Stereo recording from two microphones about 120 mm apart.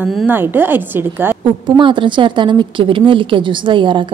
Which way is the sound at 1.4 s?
40° right (ahead or behind).